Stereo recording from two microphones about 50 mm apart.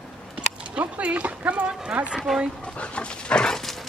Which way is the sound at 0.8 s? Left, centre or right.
Right.